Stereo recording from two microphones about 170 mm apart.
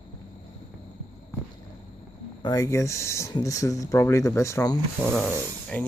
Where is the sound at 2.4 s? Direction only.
20° left (ahead or behind).